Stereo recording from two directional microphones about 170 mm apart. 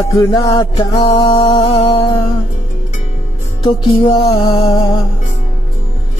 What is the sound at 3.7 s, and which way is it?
Music, 30° left (ahead or behind).